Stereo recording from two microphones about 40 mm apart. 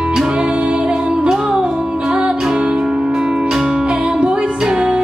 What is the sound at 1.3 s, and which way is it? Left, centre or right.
Music, centre.